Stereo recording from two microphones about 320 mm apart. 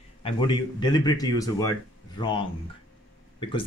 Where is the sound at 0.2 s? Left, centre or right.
Centre.